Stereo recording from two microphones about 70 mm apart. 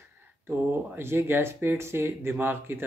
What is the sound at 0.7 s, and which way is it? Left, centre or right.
Speech, right.